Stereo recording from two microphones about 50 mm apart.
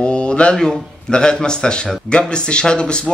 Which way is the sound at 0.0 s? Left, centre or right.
Left.